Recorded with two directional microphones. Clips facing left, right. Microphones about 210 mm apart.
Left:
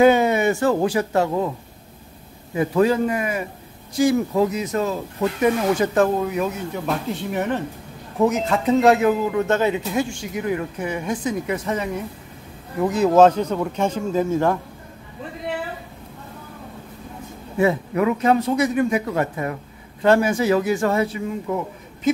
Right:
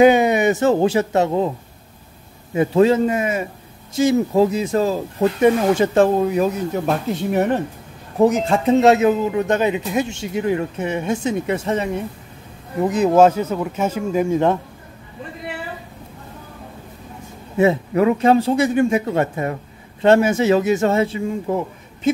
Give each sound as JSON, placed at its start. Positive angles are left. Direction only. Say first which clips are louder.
{"t": 0.0, "sound": "speech", "louder": "right 2 dB", "side_deg": -15}
{"t": 2.5, "sound": "speech", "louder": "right 4 dB", "side_deg": -25}
{"t": 17.6, "sound": "speech", "louder": "right 3 dB", "side_deg": -25}